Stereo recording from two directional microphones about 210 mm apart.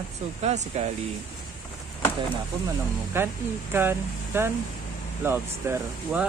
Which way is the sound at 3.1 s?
10° right (ahead or behind).